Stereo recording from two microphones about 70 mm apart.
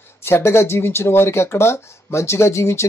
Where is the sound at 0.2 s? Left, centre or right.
Left.